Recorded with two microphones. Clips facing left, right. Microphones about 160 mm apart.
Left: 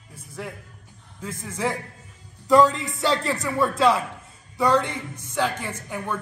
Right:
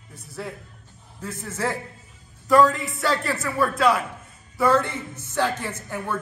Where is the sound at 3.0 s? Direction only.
20° left (ahead or behind).